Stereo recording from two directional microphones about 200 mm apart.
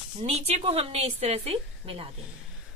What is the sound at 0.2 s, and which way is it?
Speech, 30° right (ahead or behind).